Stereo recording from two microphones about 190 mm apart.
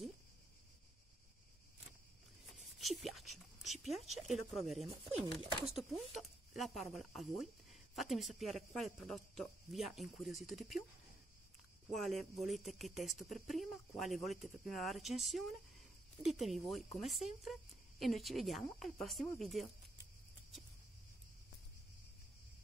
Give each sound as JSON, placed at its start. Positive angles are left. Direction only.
{"t": 2.8, "sound": "speech", "side_deg": 0}
{"t": 5.4, "sound": "speech", "side_deg": -25}
{"t": 5.7, "sound": "speech", "side_deg": 0}
{"t": 11.9, "sound": "speech", "side_deg": 0}